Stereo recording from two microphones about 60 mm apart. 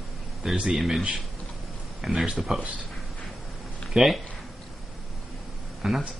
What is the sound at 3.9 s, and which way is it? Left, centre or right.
Speech, centre.